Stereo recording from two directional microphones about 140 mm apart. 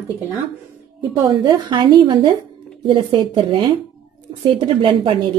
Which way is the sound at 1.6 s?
35° right (ahead or behind).